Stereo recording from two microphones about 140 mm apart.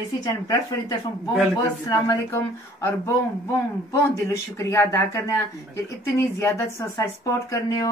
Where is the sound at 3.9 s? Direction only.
20° left (ahead or behind).